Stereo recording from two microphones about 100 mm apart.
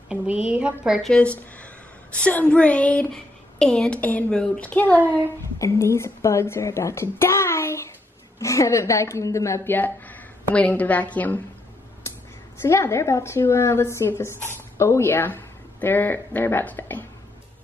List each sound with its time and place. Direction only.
0.1 s a woman's voice: 10° right (ahead or behind)
1.1 s a woman's voice: 10° left (ahead or behind)
5.6 s a child's voice: 30° left (ahead or behind)
9.8 s a woman's voice: 15° left (ahead or behind)
12.1 s a sound: 25° left (ahead or behind)
12.5 s a woman's voice: 25° left (ahead or behind)